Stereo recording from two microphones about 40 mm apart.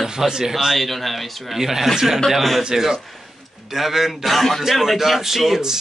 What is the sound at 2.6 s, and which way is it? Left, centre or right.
Speech, centre.